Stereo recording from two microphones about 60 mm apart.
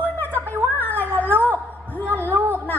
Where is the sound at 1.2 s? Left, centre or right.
Right.